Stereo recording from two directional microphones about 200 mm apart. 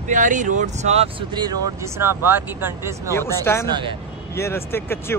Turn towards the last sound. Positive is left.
turn(degrees=10)  # may be behind; listen again after turning